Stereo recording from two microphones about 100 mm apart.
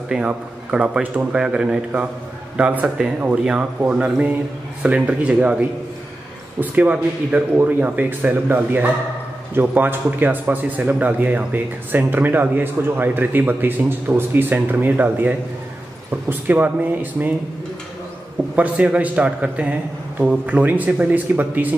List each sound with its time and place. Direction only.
0.1 s a man's voice: 10° right (ahead or behind)
18.6 s a man's voice: 15° right (ahead or behind)